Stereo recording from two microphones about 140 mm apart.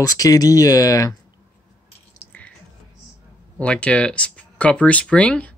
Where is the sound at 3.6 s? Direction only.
10° left (ahead or behind).